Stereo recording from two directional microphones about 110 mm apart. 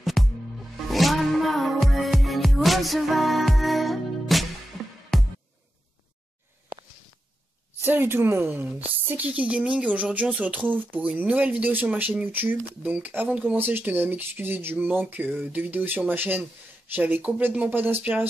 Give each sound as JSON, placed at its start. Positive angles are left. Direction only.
{"t": 0.0, "sound": "music", "side_deg": 0}
{"t": 7.8, "sound": "a woman's voice", "side_deg": -20}